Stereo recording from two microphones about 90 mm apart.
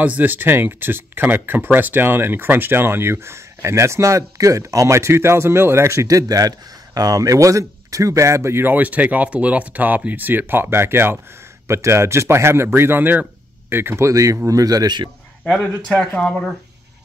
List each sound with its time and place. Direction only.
0.0 s speech: 20° right (ahead or behind); by 15.0 s 50° right (ahead or behind)
15.4 s speech: 5° left (ahead or behind)